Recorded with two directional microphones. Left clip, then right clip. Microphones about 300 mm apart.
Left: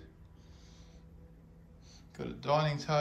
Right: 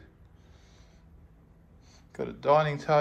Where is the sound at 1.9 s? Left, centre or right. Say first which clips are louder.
Right 7 dB; centre.